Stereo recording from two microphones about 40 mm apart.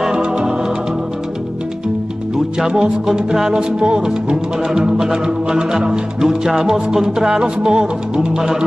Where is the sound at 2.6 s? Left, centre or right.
Centre.